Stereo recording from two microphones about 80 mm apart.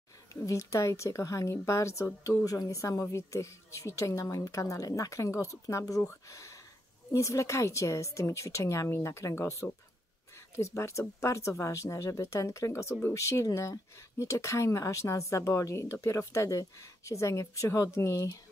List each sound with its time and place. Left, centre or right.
0.3 s a woman's voice: left